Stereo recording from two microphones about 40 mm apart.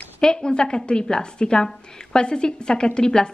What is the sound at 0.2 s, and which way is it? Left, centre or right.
A woman's voice, centre.